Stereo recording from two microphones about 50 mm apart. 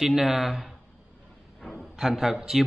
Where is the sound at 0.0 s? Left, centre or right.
Centre.